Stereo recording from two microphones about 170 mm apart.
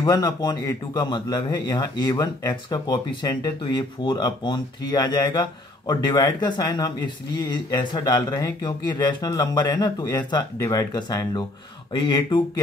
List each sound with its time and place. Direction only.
0.0 s speech: 25° left (ahead or behind)